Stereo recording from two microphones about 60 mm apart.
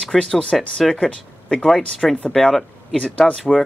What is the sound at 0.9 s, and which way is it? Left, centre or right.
Speech, centre.